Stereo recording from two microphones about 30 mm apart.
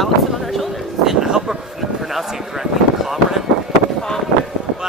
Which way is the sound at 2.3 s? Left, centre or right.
Centre.